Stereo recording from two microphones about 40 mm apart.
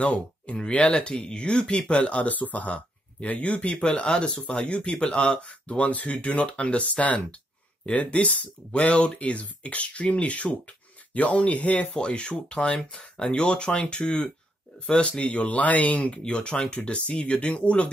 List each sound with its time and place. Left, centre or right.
0.0 s speech: left
16.7 s speech: left